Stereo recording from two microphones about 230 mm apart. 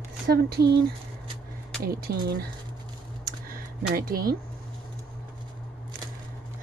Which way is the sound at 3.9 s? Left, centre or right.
Right.